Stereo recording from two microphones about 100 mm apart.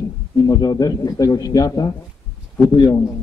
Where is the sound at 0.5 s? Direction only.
40° left (ahead or behind).